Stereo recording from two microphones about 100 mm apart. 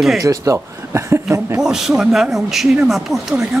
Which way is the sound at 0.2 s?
35° right (ahead or behind).